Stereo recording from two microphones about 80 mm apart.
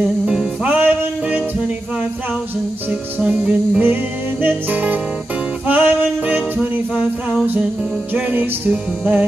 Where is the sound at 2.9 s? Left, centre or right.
Centre.